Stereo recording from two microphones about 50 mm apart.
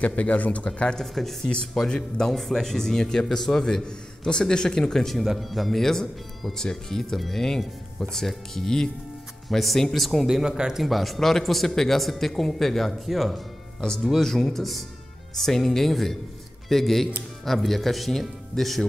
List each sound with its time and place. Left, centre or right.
0.0 s speech: left
0.9 s speech: centre
2.3 s speech: centre
10.2 s speech: centre
13.3 s speech: centre